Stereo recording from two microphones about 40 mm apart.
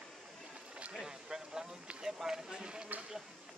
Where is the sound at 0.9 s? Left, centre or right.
Centre.